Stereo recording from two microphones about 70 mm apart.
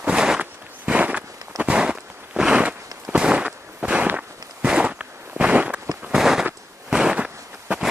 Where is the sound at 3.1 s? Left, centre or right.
Centre.